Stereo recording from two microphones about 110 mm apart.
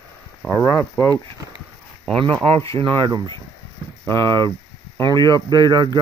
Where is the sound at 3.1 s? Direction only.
40° right (ahead or behind).